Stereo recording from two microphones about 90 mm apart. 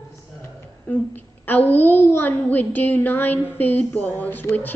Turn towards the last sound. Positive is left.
turn(degrees=20)  # may be behind; listen again after turning